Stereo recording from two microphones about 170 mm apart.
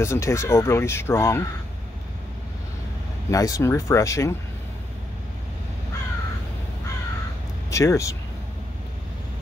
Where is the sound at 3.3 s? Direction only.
20° left (ahead or behind).